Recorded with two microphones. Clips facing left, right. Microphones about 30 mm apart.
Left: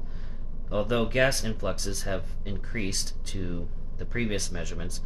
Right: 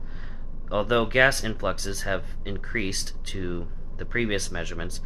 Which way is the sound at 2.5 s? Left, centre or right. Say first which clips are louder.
Right 4 dB; right.